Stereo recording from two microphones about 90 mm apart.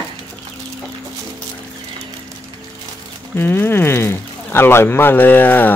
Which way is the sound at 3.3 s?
25° left (ahead or behind).